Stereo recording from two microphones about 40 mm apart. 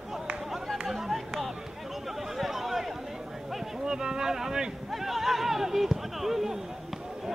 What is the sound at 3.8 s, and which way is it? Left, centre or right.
Speech, centre.